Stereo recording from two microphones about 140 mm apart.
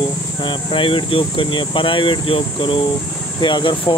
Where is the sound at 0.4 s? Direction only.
35° left (ahead or behind).